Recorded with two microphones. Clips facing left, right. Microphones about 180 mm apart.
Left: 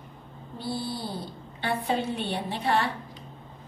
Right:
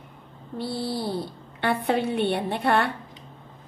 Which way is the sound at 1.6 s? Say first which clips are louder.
Right 4 dB; 65° right (ahead or behind).